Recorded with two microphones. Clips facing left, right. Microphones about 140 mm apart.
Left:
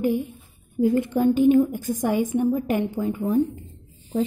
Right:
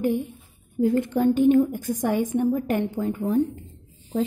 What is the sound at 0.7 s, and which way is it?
A woman's voice, 10° left (ahead or behind).